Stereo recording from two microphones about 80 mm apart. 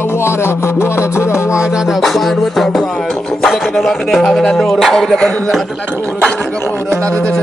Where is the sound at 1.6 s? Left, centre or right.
Centre.